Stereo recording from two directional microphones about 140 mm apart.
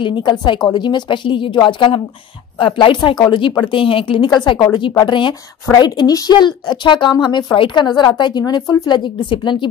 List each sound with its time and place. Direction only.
0.0 s a woman's voice: 35° left (ahead or behind)